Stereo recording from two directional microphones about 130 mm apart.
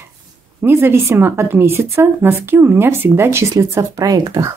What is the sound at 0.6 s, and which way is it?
Speech, 15° right (ahead or behind).